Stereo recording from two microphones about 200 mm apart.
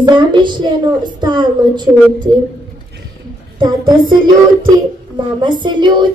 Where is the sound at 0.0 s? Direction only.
20° right (ahead or behind).